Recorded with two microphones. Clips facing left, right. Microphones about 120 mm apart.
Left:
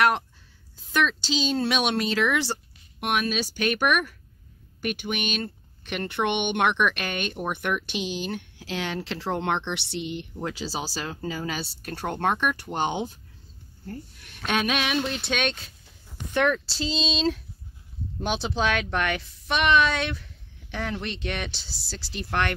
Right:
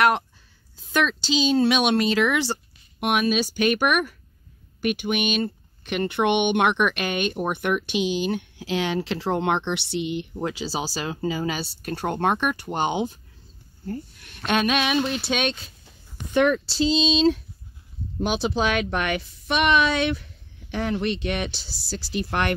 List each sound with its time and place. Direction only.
0.9 s speech: centre (ahead or behind)